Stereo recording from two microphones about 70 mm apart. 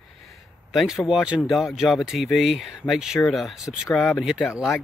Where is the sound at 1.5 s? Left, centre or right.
Centre.